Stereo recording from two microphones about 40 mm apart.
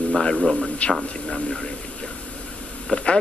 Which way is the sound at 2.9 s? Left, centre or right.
Left.